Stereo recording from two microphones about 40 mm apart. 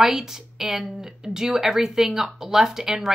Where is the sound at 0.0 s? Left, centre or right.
Centre.